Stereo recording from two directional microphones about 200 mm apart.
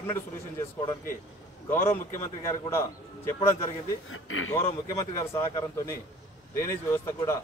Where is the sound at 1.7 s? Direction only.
10° left (ahead or behind).